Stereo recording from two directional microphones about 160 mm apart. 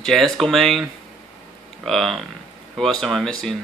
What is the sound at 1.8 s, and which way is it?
Speech, centre (ahead or behind).